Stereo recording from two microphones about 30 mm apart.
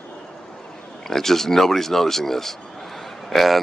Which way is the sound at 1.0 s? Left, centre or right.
Centre.